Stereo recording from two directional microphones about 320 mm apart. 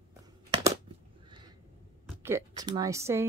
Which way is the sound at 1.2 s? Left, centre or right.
Centre.